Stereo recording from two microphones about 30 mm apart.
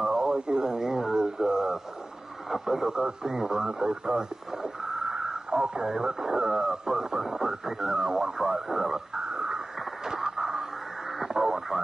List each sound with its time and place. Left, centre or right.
0.0 s radio: right
2.5 s speech: centre
8.6 s dog: centre
10.0 s a sound: centre
11.1 s radio: centre